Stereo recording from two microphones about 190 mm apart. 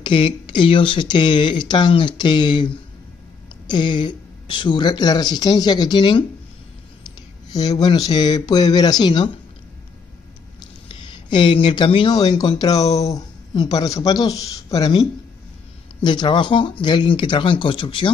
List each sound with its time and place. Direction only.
0.0 s speech: 25° left (ahead or behind)
7.5 s speech: 20° left (ahead or behind)
10.9 s speech: 25° left (ahead or behind)